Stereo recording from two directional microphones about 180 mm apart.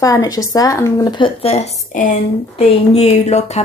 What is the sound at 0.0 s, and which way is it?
Speech, 20° left (ahead or behind).